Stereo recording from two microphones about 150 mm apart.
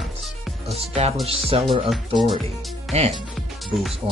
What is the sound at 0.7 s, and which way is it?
Speech, 45° right (ahead or behind).